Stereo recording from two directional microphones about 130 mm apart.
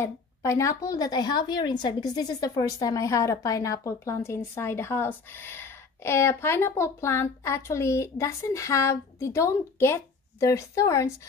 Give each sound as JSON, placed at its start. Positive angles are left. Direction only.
{"t": 0.0, "sound": "a woman's voice", "side_deg": 20}